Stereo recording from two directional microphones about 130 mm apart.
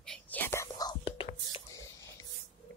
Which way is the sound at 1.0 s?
45° left (ahead or behind).